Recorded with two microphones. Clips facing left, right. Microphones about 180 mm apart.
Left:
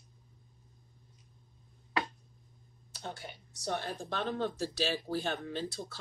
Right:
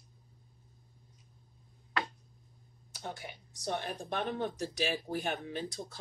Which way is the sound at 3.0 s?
15° right (ahead or behind).